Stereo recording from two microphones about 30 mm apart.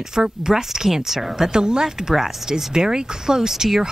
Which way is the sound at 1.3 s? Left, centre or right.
Right.